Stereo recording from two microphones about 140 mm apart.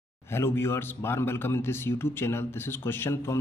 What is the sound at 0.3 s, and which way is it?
A man's voice, 15° left (ahead or behind).